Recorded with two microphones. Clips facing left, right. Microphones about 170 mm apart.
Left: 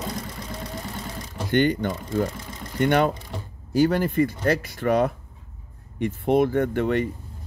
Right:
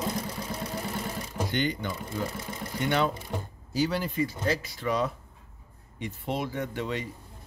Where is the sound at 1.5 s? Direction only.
55° left (ahead or behind).